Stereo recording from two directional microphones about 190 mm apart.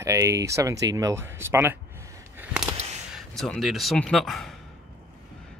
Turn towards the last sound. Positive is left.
turn(degrees=0)  # may be behind; listen again after turning